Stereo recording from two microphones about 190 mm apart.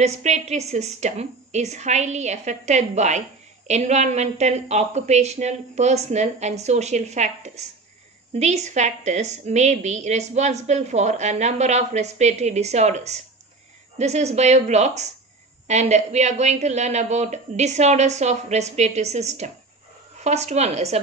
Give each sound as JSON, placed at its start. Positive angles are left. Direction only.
{"t": 0.0, "sound": "a woman's voice", "side_deg": -35}